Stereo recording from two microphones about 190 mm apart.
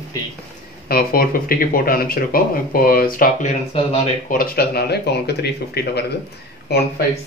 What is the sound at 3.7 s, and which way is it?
Speech, 30° left (ahead or behind).